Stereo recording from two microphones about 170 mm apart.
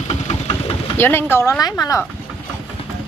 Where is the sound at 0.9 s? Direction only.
15° left (ahead or behind).